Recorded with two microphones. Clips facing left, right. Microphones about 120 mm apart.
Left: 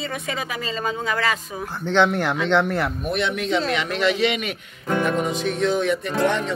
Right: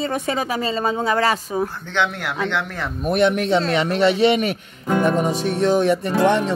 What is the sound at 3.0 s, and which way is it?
Speech, 45° right (ahead or behind).